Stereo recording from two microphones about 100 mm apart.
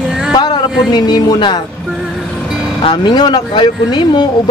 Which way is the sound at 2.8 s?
50° left (ahead or behind).